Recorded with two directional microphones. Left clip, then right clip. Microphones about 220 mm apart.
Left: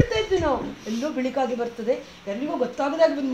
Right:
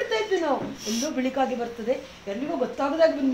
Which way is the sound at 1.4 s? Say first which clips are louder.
Left 2 dB; 20° left (ahead or behind).